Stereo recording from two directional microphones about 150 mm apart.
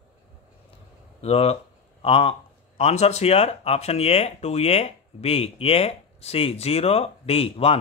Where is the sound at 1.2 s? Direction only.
40° left (ahead or behind).